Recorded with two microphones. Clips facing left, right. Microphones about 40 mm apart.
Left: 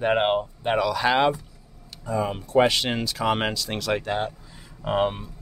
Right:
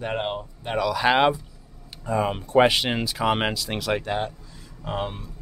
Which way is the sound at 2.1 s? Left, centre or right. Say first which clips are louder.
Right 2 dB; right.